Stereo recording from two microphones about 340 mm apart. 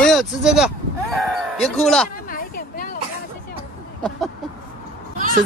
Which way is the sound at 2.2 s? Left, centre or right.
Left.